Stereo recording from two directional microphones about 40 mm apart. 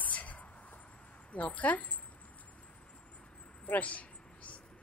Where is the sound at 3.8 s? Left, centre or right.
Left.